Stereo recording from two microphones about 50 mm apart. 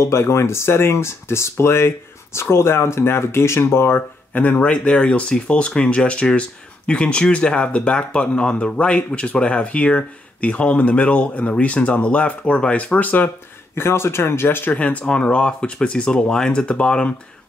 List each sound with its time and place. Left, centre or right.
0.0 s speech: left
4.3 s speech: left
13.7 s speech: left
14.7 s speech: left